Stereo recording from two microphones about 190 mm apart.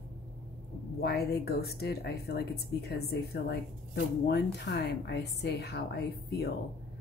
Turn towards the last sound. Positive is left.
turn(degrees=60)  # may be behind; listen again after turning